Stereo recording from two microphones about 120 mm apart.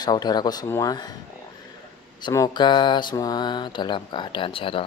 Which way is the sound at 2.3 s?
35° left (ahead or behind).